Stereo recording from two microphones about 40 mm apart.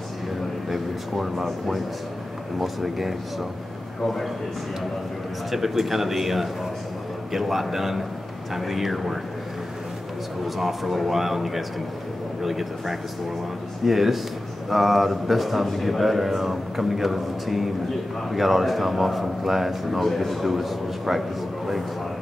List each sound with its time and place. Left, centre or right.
0.7 s a man's voice: centre
5.5 s a man's voice: centre
10.4 s a man's voice: centre